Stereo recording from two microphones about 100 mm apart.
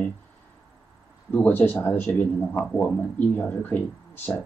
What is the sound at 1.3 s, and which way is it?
Speech, 20° left (ahead or behind).